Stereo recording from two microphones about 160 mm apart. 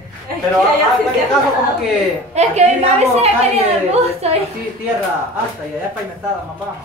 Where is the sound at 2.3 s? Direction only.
40° right (ahead or behind).